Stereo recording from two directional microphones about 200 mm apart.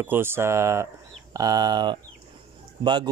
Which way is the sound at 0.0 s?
10° right (ahead or behind).